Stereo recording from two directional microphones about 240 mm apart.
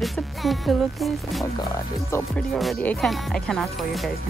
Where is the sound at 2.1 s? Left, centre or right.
Centre.